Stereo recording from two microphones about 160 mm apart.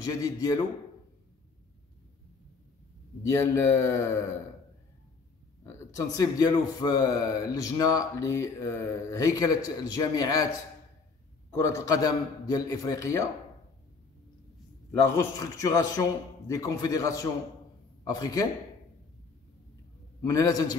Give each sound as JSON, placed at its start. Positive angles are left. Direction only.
{"t": 0.0, "sound": "a man's voice", "side_deg": 20}
{"t": 3.2, "sound": "a man's voice", "side_deg": 20}
{"t": 5.6, "sound": "a man's voice", "side_deg": 20}
{"t": 11.5, "sound": "a man's voice", "side_deg": 20}
{"t": 15.1, "sound": "a man's voice", "side_deg": 20}
{"t": 20.2, "sound": "a man's voice", "side_deg": 20}